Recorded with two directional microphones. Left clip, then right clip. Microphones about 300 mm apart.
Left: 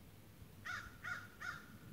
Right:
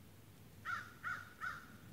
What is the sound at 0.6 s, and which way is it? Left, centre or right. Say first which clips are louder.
Crow: right 3 dB; left.